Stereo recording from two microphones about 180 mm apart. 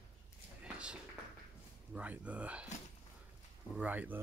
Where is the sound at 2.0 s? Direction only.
5° right (ahead or behind).